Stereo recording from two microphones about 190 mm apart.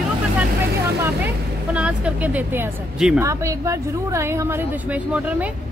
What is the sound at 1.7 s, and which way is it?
A woman's voice, 5° right (ahead or behind).